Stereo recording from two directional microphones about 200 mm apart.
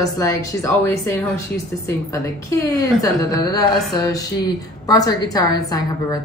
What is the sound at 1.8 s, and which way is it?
A woman's voice, 15° left (ahead or behind).